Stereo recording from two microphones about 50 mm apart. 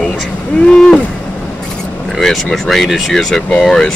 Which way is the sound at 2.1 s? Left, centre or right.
Centre.